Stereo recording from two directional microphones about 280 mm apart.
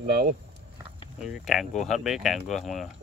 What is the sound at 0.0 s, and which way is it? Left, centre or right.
Speech, right.